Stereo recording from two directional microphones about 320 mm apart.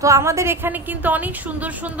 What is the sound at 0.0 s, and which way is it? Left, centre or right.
A woman's voice, centre.